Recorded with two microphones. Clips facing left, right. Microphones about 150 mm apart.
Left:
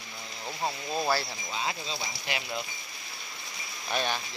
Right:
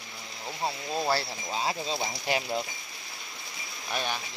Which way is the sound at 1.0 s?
30° right (ahead or behind).